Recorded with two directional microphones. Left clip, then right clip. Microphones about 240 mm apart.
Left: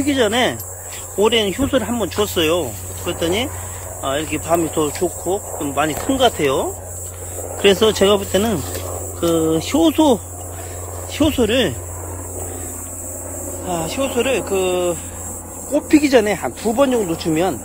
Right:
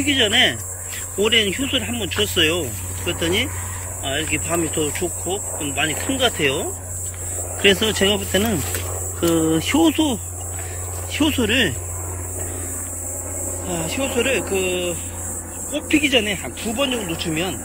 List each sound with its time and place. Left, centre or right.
0.0 s speech: left; by 10.0 s centre
11.1 s speech: centre
13.7 s speech: centre